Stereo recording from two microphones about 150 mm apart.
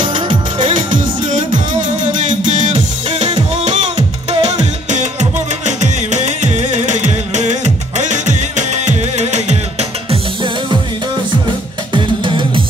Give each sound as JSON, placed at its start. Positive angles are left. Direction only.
{"t": 0.3, "sound": "music", "side_deg": -35}
{"t": 1.7, "sound": "music", "side_deg": -60}
{"t": 4.3, "sound": "music", "side_deg": -50}
{"t": 11.9, "sound": "music", "side_deg": -35}